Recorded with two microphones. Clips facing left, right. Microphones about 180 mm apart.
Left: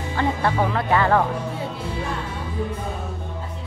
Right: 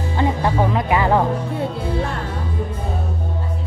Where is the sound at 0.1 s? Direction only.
15° right (ahead or behind).